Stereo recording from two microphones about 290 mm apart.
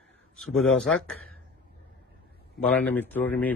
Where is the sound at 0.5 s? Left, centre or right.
Centre.